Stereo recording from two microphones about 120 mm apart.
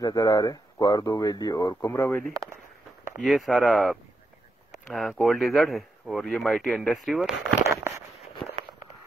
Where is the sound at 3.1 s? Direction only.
Centre (ahead or behind).